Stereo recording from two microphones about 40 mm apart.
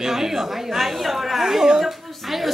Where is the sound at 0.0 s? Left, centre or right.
Centre.